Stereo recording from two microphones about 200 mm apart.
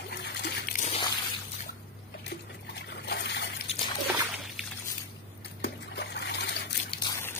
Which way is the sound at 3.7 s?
30° left (ahead or behind).